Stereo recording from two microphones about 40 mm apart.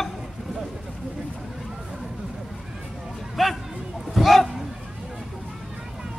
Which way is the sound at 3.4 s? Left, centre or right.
Centre.